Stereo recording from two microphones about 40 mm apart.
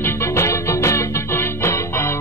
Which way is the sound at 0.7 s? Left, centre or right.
Left.